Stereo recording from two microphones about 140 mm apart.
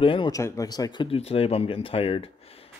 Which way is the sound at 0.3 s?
20° left (ahead or behind).